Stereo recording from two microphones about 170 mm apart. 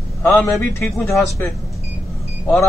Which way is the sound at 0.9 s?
Centre (ahead or behind).